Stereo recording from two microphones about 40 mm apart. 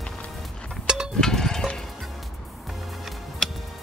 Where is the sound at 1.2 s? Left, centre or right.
Centre.